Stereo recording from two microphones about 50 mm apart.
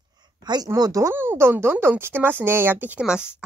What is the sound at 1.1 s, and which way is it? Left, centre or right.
Speech, right.